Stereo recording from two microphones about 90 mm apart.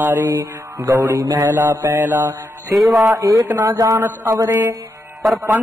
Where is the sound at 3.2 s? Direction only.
40° right (ahead or behind).